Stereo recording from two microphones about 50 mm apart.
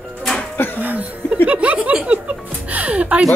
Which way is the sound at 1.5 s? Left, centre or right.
Right.